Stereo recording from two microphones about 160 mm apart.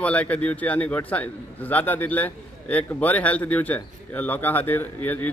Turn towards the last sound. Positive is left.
turn(degrees=10)  # may be behind; listen again after turning